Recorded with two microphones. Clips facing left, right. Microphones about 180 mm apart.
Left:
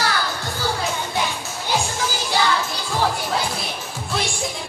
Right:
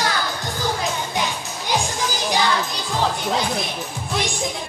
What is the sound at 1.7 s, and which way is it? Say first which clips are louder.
Music: even; 15° right (ahead or behind).